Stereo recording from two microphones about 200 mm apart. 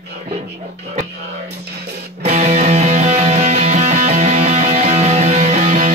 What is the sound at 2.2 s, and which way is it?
Music, 35° right (ahead or behind).